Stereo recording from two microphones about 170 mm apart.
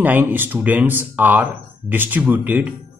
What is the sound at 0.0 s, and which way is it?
Speech, 10° right (ahead or behind).